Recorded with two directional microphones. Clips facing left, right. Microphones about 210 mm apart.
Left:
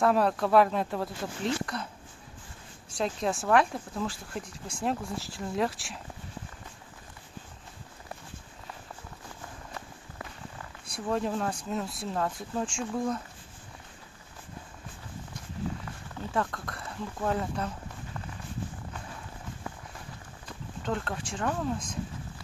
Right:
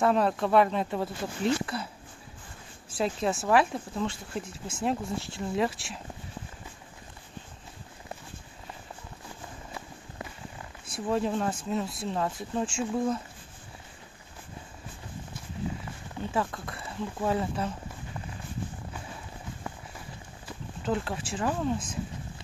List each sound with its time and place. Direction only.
0.0 s speech: centre (ahead or behind)
2.9 s speech: 5° right (ahead or behind)
11.0 s speech: centre (ahead or behind)
16.3 s speech: 5° right (ahead or behind)
20.4 s speech: 5° right (ahead or behind)